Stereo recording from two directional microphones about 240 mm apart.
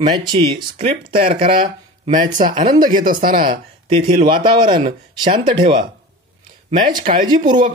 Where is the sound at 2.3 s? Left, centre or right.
Right.